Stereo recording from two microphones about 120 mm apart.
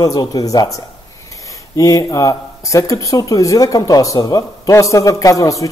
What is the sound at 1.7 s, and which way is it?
Speech, 30° left (ahead or behind).